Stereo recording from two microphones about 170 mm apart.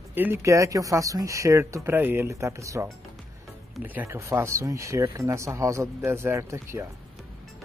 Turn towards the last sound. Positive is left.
turn(degrees=-15)  # may be behind; listen again after turning